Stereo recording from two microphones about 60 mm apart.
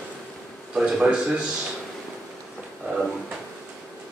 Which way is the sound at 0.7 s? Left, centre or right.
Centre.